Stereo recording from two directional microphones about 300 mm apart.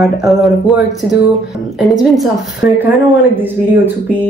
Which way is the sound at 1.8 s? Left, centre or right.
Centre.